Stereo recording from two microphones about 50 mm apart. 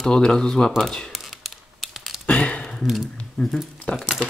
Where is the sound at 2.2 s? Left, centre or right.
Left.